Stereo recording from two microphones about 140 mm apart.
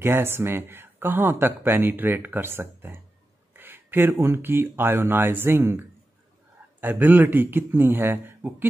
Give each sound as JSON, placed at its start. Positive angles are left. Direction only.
{"t": 0.0, "sound": "speech", "side_deg": -15}